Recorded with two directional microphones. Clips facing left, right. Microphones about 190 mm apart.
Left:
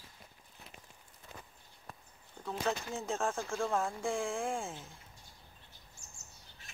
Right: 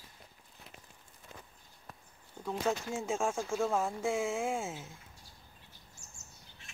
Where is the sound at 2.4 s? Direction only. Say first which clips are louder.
Right 2 dB; 10° right (ahead or behind).